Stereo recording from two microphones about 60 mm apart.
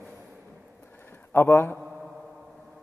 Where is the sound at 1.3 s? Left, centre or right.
Left.